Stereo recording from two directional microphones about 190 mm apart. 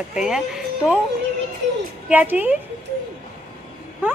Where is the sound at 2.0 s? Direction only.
10° right (ahead or behind).